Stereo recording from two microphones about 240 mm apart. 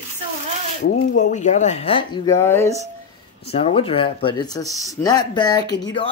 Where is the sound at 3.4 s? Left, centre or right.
Left.